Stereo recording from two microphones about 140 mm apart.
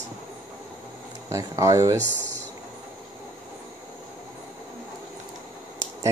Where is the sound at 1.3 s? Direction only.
20° right (ahead or behind).